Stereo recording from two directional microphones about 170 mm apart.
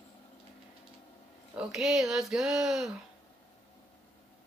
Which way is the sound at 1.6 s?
5° right (ahead or behind).